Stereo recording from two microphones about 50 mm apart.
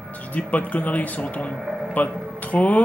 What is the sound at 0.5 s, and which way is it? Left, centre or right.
Speech, left.